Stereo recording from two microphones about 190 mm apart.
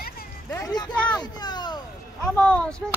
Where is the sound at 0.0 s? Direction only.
55° left (ahead or behind).